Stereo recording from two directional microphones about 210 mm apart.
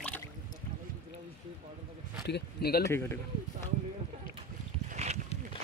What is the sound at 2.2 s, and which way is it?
Speech, 50° left (ahead or behind).